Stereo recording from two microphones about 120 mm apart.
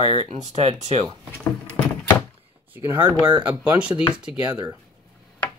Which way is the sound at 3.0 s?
40° right (ahead or behind).